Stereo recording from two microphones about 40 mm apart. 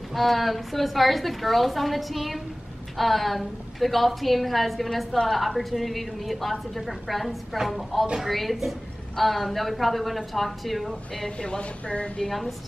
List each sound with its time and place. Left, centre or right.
0.1 s a woman's voice: centre
11.2 s a woman's voice: left
12.3 s a woman's voice: centre